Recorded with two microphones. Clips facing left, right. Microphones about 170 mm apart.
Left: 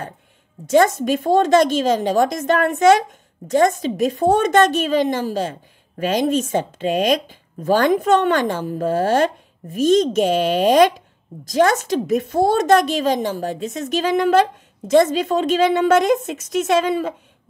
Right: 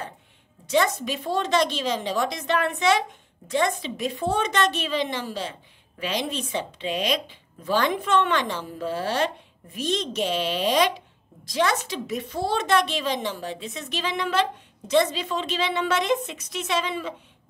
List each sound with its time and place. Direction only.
0.7 s a woman's voice: 45° left (ahead or behind)